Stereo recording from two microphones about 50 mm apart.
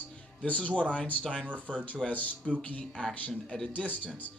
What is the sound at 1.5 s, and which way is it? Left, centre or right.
Speech, right.